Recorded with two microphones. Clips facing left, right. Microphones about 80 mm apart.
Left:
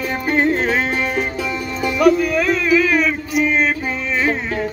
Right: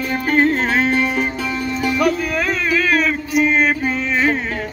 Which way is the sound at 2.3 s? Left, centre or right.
Centre.